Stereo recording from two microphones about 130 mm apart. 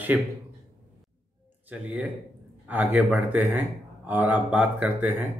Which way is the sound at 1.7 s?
10° right (ahead or behind).